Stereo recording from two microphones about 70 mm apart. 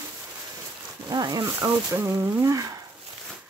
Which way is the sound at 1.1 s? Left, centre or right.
Right.